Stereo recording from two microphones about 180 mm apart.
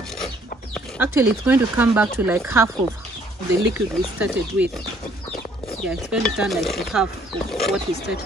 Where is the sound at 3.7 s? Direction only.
10° right (ahead or behind).